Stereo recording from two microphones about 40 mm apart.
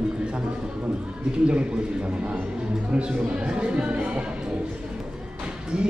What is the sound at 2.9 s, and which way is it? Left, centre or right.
Speech, right.